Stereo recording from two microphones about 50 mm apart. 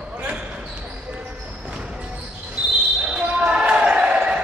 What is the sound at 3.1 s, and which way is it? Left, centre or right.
Basketball bounce, centre.